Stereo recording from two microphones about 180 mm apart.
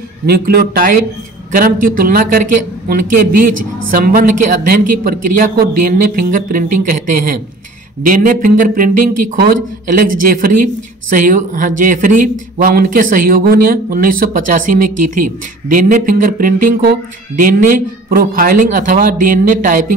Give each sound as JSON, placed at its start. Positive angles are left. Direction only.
{"t": 0.3, "sound": "speech", "side_deg": -55}